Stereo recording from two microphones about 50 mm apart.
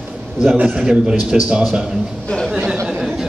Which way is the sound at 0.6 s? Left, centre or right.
Centre.